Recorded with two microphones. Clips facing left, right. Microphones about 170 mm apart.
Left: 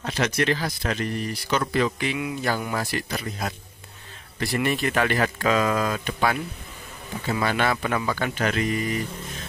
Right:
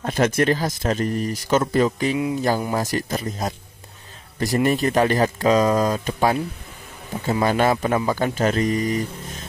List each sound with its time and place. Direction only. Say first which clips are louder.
0.0 s speech: right 5 dB; 50° right (ahead or behind)
7.4 s speech: right 5 dB; 40° right (ahead or behind)